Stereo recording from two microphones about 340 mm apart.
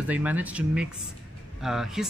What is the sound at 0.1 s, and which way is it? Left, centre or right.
Speech, centre.